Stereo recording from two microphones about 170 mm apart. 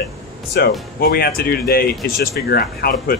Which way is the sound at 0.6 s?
70° left (ahead or behind).